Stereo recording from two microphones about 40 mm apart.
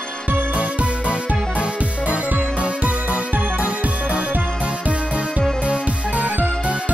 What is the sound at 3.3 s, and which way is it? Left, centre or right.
Music, right.